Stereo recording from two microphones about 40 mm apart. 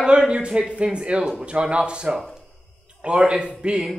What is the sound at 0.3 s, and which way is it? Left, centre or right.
Speech, right.